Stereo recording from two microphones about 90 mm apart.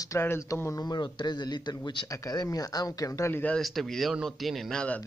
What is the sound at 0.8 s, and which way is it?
A man's voice, 55° left (ahead or behind).